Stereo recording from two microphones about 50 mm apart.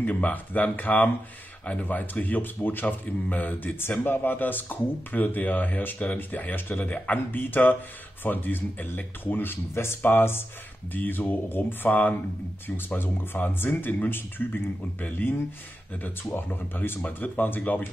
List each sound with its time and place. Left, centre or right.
0.0 s a man's voice: left
12.6 s speech: left
15.0 s a man's voice: left